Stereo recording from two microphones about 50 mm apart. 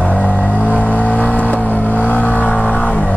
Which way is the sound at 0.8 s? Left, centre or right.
Left.